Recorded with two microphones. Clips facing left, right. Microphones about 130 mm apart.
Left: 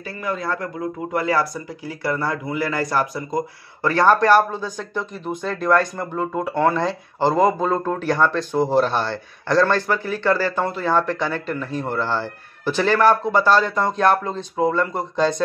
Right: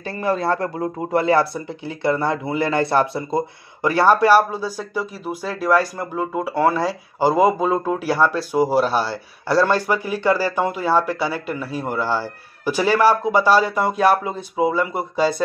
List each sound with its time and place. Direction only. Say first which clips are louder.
0.0 s speech: right 5 dB; 30° right (ahead or behind)
3.8 s speech: right 1 dB; 10° right (ahead or behind)